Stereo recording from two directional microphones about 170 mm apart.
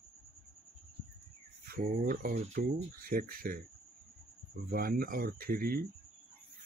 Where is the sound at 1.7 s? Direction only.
55° right (ahead or behind).